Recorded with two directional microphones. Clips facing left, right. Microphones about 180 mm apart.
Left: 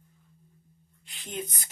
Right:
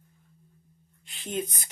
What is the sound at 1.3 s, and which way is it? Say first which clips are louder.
Speech: right 5 dB; 15° right (ahead or behind).